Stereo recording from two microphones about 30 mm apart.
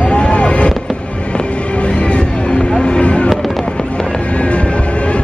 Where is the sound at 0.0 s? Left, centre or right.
Left.